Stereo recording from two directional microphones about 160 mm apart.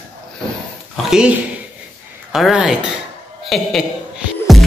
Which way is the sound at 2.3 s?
Centre (ahead or behind).